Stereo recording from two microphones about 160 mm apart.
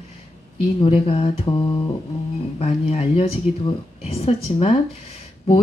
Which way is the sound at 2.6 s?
40° left (ahead or behind).